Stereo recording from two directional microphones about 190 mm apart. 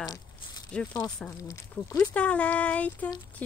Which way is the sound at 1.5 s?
15° left (ahead or behind).